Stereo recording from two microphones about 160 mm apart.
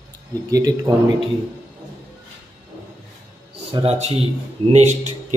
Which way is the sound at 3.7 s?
35° right (ahead or behind).